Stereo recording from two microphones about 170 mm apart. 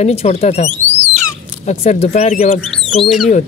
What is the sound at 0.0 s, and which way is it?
Speech, 40° left (ahead or behind).